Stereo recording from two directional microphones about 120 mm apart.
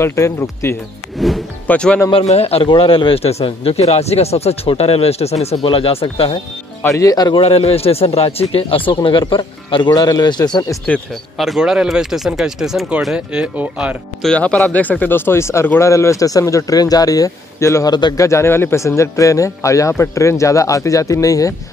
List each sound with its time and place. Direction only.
0.0 s speech: 25° left (ahead or behind)
1.1 s music: centre (ahead or behind)
1.7 s speech: 10° left (ahead or behind)
2.2 s a man's voice: 60° left (ahead or behind)
5.6 s speech: 50° left (ahead or behind)
7.0 s speech: 30° left (ahead or behind)
7.4 s a man's voice: 60° left (ahead or behind); by 10.8 s 35° left (ahead or behind)
11.3 s speech: centre (ahead or behind)
14.2 s speech: 10° left (ahead or behind); by 21.5 s 30° left (ahead or behind)